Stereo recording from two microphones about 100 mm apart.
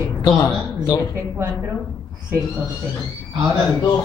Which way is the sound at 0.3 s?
35° left (ahead or behind).